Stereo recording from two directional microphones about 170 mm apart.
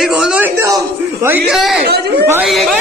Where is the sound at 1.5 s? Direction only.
Centre (ahead or behind).